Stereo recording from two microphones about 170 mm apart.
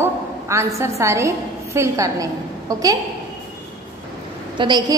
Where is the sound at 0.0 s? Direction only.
15° right (ahead or behind).